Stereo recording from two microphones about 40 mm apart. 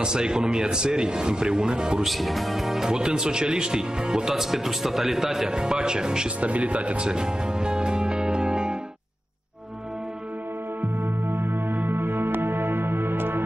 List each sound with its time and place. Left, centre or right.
0.0 s speech: centre
2.0 s speech: centre
4.3 s speech: centre
6.4 s speech: right
7.1 s music: right
10.8 s music: right